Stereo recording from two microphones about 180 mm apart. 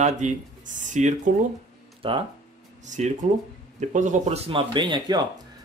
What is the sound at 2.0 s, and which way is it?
Speech, 30° right (ahead or behind).